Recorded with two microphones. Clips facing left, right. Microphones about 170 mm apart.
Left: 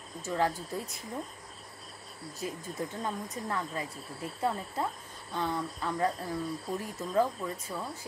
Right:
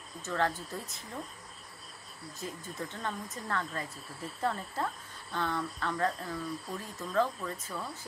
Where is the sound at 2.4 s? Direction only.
15° left (ahead or behind).